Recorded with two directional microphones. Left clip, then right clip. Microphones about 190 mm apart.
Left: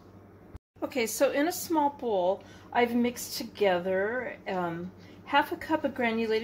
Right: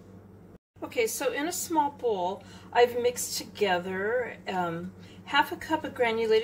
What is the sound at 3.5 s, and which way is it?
A woman's voice, 30° left (ahead or behind).